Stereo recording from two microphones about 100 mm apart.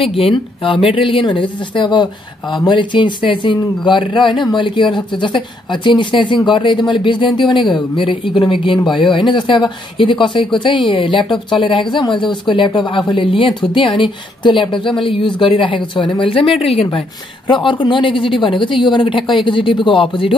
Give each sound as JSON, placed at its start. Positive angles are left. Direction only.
{"t": 0.1, "sound": "speech", "side_deg": 65}